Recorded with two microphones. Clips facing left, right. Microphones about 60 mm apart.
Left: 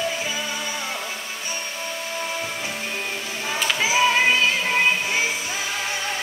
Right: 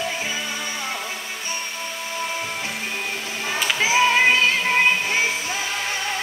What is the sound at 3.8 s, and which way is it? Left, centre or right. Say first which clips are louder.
Music: right 2 dB; right.